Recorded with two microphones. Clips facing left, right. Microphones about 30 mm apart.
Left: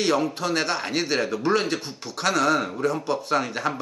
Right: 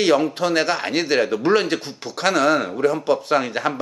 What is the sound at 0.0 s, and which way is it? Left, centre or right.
A man's voice, centre.